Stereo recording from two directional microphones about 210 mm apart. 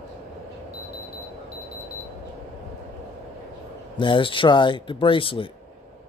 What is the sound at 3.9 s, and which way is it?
Speech, 25° left (ahead or behind).